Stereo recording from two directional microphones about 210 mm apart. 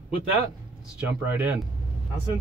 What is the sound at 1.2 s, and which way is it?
Speech, 10° right (ahead or behind).